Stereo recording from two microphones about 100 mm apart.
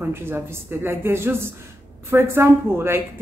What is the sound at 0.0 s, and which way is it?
Speech, 25° right (ahead or behind).